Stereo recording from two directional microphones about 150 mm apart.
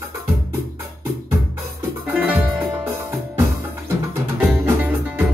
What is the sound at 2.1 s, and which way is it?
Music, 10° right (ahead or behind).